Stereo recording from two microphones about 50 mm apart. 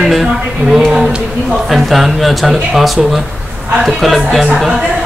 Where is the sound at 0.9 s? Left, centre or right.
Centre.